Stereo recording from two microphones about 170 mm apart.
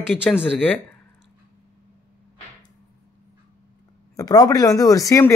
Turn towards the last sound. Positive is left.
turn(degrees=20)  # may be behind; listen again after turning